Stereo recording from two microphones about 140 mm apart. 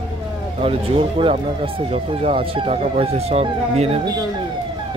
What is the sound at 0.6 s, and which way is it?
Speech, 40° right (ahead or behind).